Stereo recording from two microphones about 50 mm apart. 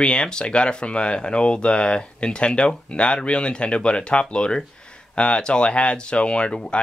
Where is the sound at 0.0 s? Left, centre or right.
Centre.